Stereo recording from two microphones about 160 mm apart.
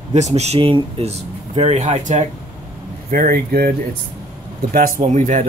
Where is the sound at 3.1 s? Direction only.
65° right (ahead or behind).